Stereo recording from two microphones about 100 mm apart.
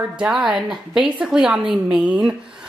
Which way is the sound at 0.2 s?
5° right (ahead or behind).